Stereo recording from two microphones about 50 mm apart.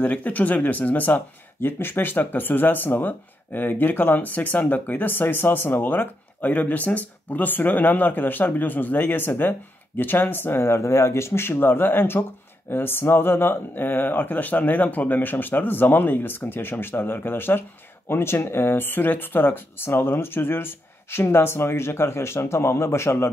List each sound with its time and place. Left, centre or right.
0.0 s speech: left